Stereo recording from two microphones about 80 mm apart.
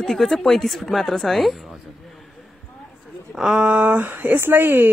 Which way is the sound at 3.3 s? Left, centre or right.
Centre.